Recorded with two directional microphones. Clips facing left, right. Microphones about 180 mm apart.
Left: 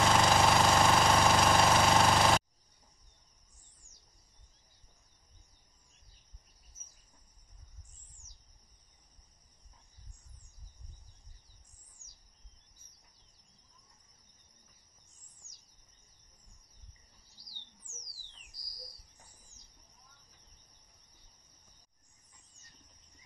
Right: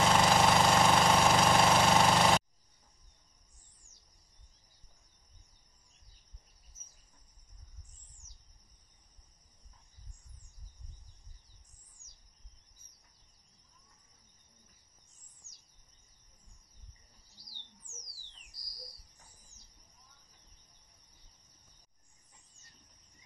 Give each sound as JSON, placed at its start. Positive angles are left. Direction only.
{"t": 0.0, "sound": "jackhammer", "side_deg": 0}